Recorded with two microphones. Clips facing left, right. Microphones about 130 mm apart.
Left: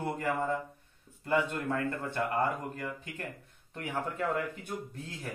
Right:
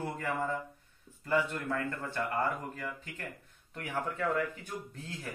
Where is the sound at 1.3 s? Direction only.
20° left (ahead or behind).